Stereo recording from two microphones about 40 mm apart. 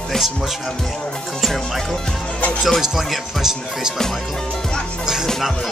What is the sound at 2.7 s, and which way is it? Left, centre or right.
Speech, centre.